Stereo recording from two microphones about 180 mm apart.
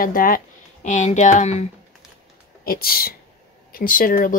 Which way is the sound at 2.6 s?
55° left (ahead or behind).